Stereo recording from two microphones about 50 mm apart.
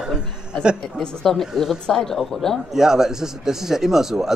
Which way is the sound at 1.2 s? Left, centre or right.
Centre.